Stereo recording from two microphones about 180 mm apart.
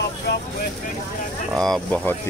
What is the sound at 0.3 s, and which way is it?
Speech, 70° left (ahead or behind).